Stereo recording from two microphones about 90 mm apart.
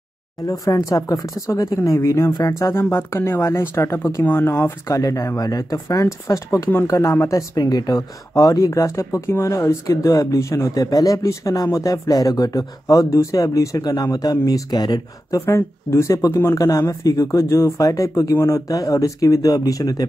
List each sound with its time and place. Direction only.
0.5 s speech: 40° left (ahead or behind)
2.7 s speech: 25° left (ahead or behind)
4.8 s speech: 40° left (ahead or behind)
15.4 s speech: 30° left (ahead or behind)